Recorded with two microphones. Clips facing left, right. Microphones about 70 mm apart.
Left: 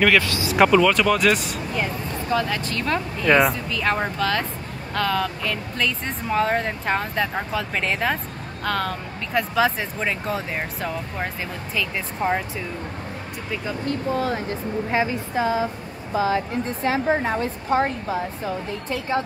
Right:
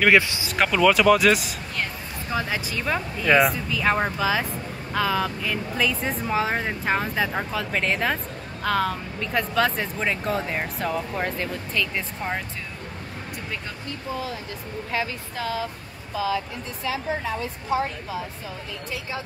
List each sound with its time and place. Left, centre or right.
0.1 s speech: right
0.5 s speech: centre
2.3 s speech: centre
14.9 s a woman's voice: left
16.8 s speech: left